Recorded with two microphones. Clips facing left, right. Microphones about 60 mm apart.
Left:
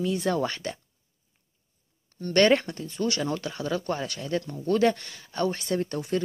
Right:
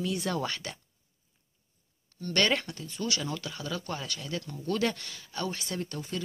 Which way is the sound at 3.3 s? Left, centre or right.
Left.